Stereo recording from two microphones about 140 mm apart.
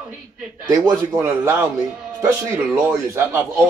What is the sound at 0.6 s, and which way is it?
Speech, 25° right (ahead or behind).